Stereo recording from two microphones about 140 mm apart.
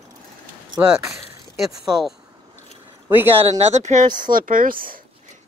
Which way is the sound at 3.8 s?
55° right (ahead or behind).